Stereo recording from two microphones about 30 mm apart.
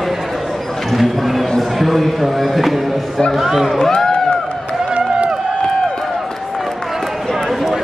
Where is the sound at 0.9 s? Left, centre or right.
Centre.